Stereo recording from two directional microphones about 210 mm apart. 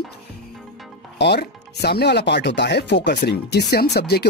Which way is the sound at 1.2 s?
50° left (ahead or behind).